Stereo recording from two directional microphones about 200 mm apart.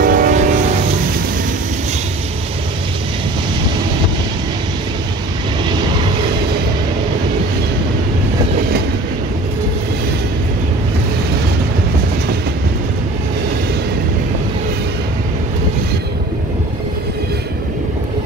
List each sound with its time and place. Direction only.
0.0 s train: 45° right (ahead or behind)
5.7 s vehicle: 25° right (ahead or behind)